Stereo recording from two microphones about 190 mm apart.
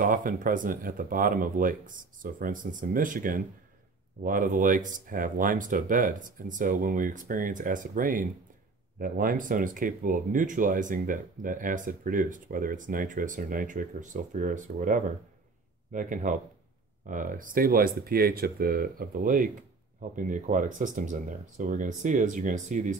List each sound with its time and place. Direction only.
0.0 s speech: 45° right (ahead or behind)